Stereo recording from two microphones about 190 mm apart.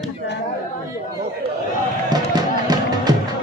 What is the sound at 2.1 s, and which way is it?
Music, 20° right (ahead or behind).